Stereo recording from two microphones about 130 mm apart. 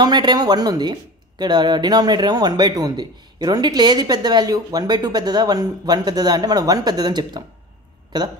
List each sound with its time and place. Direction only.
0.0 s speech: 35° right (ahead or behind)